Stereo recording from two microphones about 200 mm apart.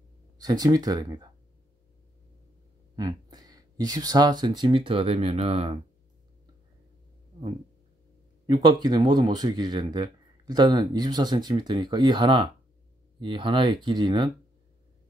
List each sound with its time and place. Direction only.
0.4 s speech: 20° right (ahead or behind)
3.0 s speech: 20° right (ahead or behind)
8.5 s speech: 20° right (ahead or behind)